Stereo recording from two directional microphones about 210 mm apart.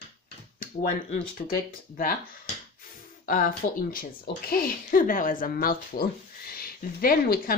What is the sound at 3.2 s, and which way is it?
Speech, 40° left (ahead or behind).